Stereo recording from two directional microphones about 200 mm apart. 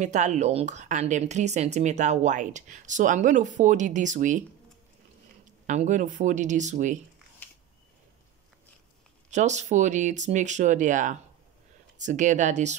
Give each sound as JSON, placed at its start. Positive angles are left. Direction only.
{"t": 0.0, "sound": "speech", "side_deg": -35}
{"t": 5.7, "sound": "speech", "side_deg": -40}
{"t": 9.3, "sound": "speech", "side_deg": -35}